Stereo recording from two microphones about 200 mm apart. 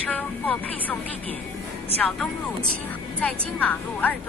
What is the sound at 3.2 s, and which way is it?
Speech, 10° left (ahead or behind).